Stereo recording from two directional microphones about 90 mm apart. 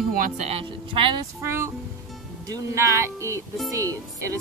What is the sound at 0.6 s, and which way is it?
Speech, 75° right (ahead or behind).